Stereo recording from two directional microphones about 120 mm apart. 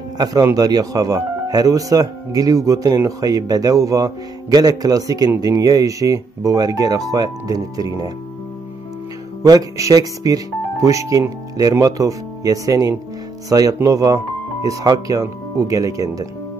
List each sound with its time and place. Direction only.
0.2 s speech: 30° right (ahead or behind)
9.4 s speech: 30° right (ahead or behind)